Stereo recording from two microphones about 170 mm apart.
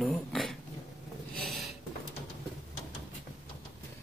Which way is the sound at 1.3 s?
65° right (ahead or behind).